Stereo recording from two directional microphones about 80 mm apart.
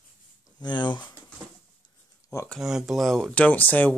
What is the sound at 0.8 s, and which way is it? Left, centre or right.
Speech, left.